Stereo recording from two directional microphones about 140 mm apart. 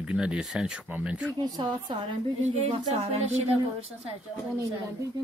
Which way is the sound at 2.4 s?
50° right (ahead or behind).